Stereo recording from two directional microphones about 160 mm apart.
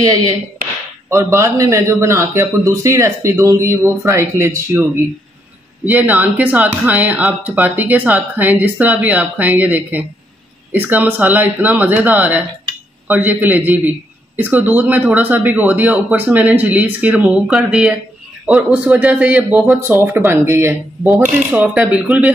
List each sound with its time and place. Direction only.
1.0 s a man's voice: 15° right (ahead or behind)
5.9 s a man's voice: 10° right (ahead or behind)